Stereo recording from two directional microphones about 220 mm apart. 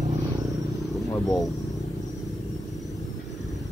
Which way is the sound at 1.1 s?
15° left (ahead or behind).